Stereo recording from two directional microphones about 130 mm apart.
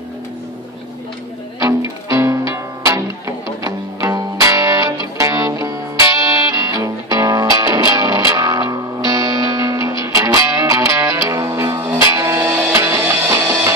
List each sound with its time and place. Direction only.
2.0 s music: 25° right (ahead or behind)